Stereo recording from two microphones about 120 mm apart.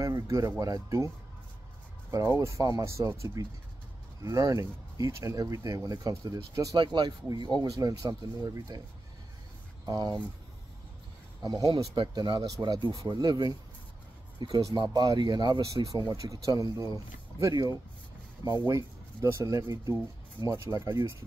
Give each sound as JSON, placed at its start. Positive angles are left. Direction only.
{"t": 0.0, "sound": "speech", "side_deg": -25}
{"t": 9.8, "sound": "speech", "side_deg": -35}
{"t": 11.4, "sound": "speech", "side_deg": -30}
{"t": 18.7, "sound": "speech", "side_deg": -25}